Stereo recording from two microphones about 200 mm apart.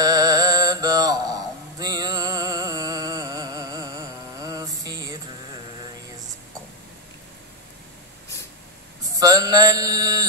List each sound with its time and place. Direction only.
0.0 s mantra: 20° right (ahead or behind)
9.1 s mantra: 20° right (ahead or behind)